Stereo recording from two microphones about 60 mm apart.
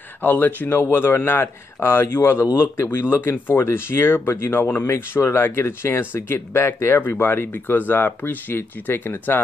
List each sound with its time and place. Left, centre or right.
0.2 s speech: left
7.0 s speech: left